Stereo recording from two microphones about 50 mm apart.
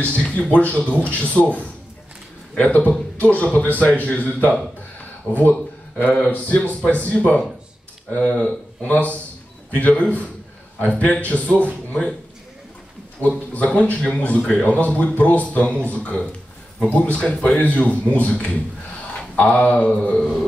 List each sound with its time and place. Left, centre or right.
0.0 s speech: left
6.0 s speech: left
13.2 s speech: left
14.4 s a man's voice: centre
14.7 s speech: left
17.6 s speech: left
20.2 s a sound: centre